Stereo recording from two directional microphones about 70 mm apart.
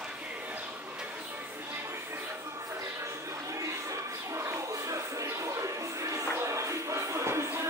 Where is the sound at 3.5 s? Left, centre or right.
Right.